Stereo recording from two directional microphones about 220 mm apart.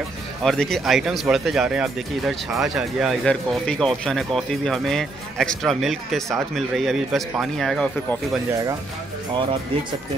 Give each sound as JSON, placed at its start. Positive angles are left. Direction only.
{"t": 0.4, "sound": "speech", "side_deg": 0}
{"t": 8.5, "sound": "speech", "side_deg": -15}